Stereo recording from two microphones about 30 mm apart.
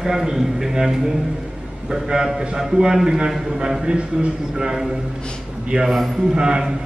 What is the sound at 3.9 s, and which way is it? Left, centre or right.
Speech, right.